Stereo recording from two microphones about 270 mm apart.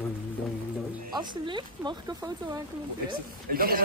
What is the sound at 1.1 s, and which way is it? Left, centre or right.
Speech, centre.